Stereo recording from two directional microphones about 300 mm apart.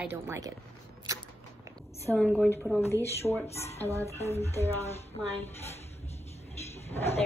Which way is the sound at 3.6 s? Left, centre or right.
Left.